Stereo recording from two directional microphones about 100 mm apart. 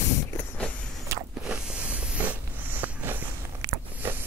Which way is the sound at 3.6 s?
35° right (ahead or behind).